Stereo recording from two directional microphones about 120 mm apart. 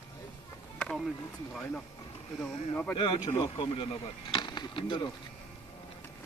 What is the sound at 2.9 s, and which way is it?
Speech, 45° left (ahead or behind).